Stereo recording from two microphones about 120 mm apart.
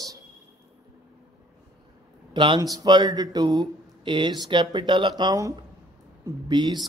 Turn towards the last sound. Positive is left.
turn(degrees=-40)  # may be behind; listen again after turning